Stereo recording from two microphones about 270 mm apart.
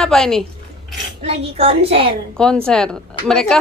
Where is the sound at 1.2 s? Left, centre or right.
Right.